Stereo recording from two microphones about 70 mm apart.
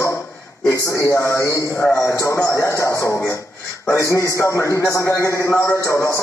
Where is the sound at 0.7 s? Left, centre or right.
Left.